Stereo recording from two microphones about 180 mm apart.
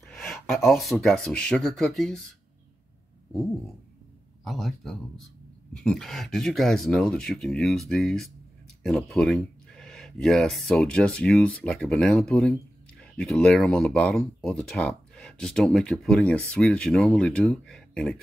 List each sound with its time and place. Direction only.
0.0 s speech: centre (ahead or behind)
4.5 s speech: centre (ahead or behind)